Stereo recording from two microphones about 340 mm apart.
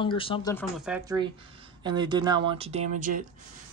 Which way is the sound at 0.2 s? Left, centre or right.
Centre.